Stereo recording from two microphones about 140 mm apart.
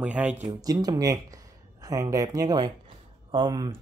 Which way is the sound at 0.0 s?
10° right (ahead or behind).